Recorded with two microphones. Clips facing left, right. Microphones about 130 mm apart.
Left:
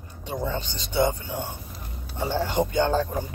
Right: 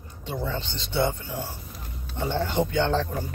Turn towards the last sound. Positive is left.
turn(degrees=10)  # may be behind; listen again after turning